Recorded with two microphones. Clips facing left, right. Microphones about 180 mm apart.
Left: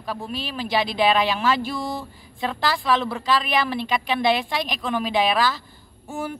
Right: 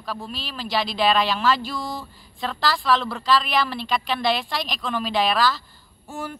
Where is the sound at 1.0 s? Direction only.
20° left (ahead or behind).